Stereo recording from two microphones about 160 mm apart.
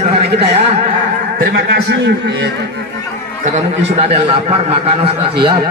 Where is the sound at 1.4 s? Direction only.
90° right.